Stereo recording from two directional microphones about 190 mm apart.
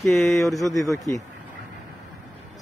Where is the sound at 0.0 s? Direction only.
Centre (ahead or behind).